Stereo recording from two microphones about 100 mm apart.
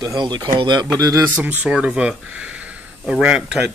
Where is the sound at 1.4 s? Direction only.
15° right (ahead or behind).